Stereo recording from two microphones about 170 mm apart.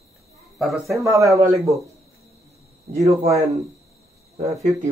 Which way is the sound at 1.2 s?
20° right (ahead or behind).